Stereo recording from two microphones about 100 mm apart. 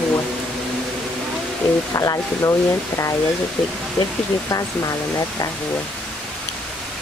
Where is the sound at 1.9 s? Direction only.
35° left (ahead or behind).